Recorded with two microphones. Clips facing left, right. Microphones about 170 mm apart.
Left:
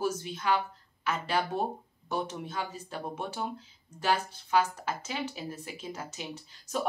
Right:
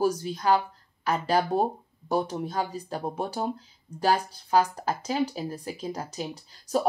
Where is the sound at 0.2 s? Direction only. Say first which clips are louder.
Right 5 dB; 35° right (ahead or behind).